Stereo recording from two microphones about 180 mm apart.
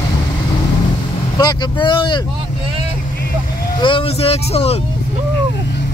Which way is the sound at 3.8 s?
30° left (ahead or behind).